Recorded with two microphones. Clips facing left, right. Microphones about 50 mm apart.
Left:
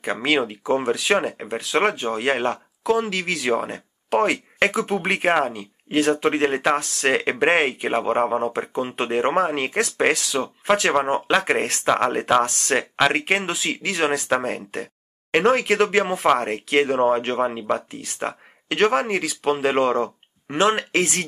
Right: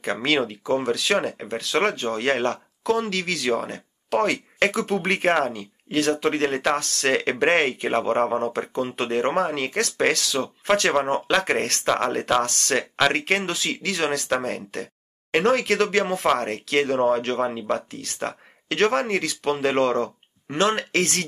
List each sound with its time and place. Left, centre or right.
0.0 s speech: centre